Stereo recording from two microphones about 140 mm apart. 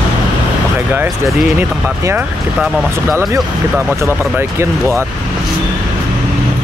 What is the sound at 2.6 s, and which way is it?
Speech, centre (ahead or behind).